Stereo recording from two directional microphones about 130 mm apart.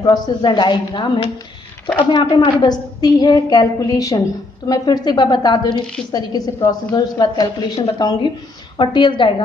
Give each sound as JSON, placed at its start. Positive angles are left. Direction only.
{"t": 0.0, "sound": "a woman's voice", "side_deg": 35}